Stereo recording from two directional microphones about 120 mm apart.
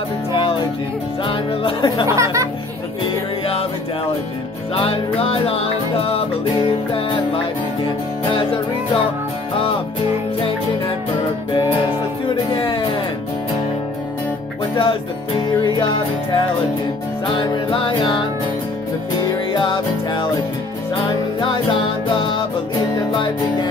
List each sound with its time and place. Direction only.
1.2 s music: 45° left (ahead or behind)
2.0 s speech: 25° right (ahead or behind)
4.7 s music: 50° left (ahead or behind)
12.5 s music: 45° left (ahead or behind)
15.6 s music: 45° left (ahead or behind)
17.4 s music: 45° left (ahead or behind)
19.5 s music: 40° left (ahead or behind)